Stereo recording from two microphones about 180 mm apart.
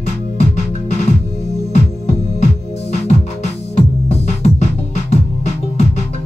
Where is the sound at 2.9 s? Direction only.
35° left (ahead or behind).